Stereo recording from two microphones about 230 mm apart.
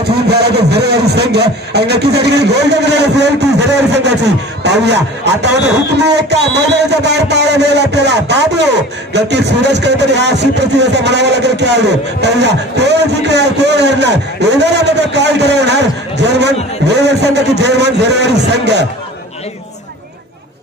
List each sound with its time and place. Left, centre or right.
0.3 s speech: right